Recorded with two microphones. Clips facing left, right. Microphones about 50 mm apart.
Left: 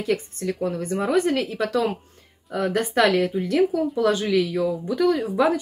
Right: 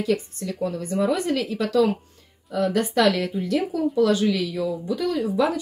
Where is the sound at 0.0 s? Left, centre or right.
Left.